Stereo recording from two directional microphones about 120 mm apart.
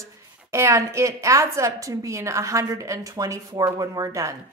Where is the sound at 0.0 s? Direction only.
20° right (ahead or behind).